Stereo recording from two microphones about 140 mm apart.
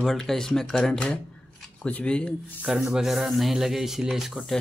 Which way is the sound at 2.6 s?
5° right (ahead or behind).